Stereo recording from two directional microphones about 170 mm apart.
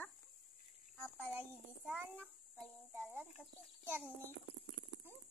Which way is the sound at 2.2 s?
5° left (ahead or behind).